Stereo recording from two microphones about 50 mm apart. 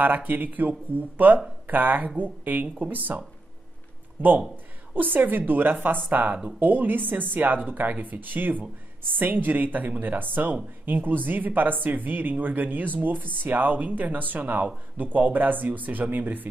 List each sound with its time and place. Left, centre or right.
0.0 s speech: right
4.2 s speech: right